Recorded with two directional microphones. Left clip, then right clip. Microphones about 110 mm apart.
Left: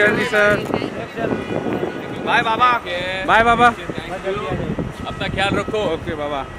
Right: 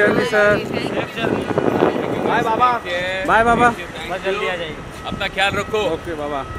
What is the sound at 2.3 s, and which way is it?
Speech, 50° left (ahead or behind).